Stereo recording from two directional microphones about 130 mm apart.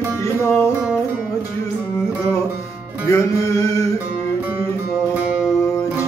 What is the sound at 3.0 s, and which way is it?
Music, 25° left (ahead or behind).